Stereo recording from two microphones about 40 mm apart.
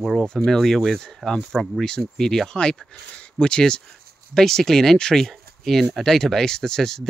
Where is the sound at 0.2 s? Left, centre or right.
Centre.